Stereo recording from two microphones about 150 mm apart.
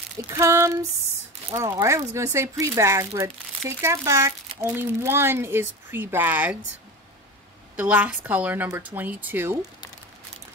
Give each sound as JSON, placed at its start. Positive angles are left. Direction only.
{"t": 0.2, "sound": "speech", "side_deg": -20}
{"t": 7.7, "sound": "speech", "side_deg": -10}